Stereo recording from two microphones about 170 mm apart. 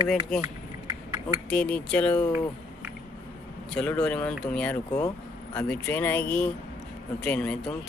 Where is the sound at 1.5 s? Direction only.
5° left (ahead or behind).